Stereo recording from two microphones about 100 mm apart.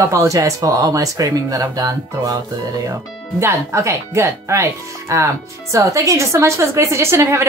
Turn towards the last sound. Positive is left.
turn(degrees=-25)  # may be behind; listen again after turning